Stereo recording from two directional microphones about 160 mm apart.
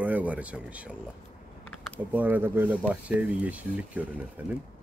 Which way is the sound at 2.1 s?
10° right (ahead or behind).